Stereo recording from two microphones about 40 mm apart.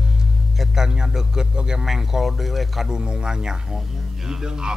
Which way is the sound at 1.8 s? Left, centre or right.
Centre.